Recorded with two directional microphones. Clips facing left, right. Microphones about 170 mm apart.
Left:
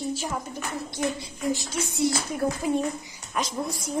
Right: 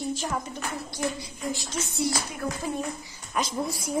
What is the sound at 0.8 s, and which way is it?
Child singing, 20° left (ahead or behind).